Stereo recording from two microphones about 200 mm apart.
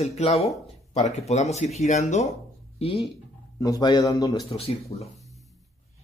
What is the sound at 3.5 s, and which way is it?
Speech, 15° left (ahead or behind).